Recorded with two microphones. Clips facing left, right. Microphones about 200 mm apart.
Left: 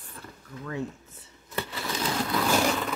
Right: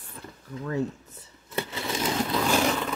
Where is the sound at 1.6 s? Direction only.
25° right (ahead or behind).